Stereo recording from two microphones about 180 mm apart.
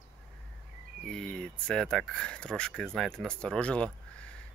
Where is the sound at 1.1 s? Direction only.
5° left (ahead or behind).